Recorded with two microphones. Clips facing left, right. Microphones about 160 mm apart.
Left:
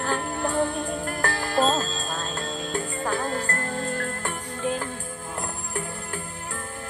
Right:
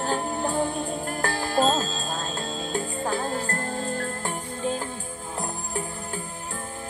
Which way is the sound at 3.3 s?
50° left (ahead or behind).